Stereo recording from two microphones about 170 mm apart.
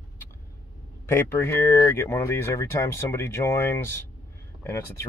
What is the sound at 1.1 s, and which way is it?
Speech, 15° left (ahead or behind).